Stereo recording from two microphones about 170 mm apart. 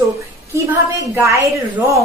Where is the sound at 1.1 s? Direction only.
15° right (ahead or behind).